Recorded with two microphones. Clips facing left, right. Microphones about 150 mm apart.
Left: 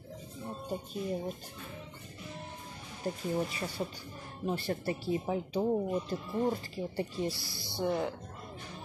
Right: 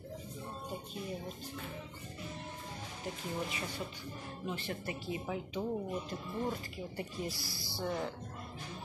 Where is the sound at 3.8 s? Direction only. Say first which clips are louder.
Left 4 dB; 35° left (ahead or behind); by 8.1 s 15° left (ahead or behind).